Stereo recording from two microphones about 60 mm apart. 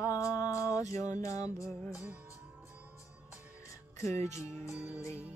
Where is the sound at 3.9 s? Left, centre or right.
Left.